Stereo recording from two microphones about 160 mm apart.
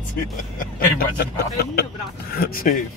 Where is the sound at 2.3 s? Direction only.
65° left (ahead or behind).